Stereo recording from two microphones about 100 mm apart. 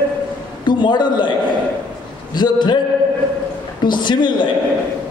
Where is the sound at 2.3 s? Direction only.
50° left (ahead or behind).